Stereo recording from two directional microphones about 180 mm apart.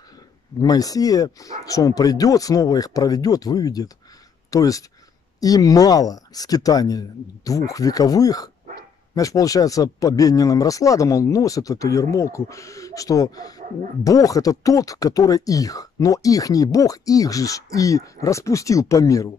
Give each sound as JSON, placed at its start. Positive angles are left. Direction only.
{"t": 0.6, "sound": "speech", "side_deg": 20}